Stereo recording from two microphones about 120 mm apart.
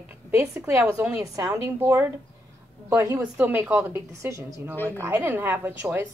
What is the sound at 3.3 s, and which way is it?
A woman's voice, 15° right (ahead or behind).